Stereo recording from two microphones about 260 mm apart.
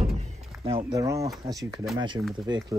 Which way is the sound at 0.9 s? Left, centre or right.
Centre.